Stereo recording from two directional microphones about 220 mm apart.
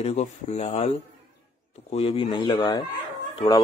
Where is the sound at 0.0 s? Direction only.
30° left (ahead or behind).